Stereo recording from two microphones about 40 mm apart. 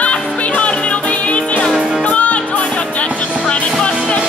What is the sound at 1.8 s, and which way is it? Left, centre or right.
Music, centre.